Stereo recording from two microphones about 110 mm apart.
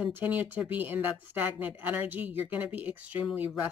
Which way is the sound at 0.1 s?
15° right (ahead or behind).